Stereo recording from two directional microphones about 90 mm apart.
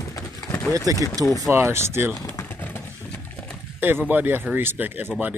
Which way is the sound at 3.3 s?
10° left (ahead or behind).